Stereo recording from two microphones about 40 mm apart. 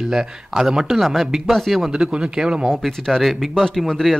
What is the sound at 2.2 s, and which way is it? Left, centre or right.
Speech, centre.